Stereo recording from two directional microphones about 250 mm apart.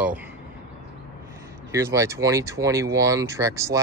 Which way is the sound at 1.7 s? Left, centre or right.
Centre.